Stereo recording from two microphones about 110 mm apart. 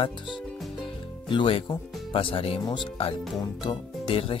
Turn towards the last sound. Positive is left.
turn(degrees=55)  # may be behind; listen again after turning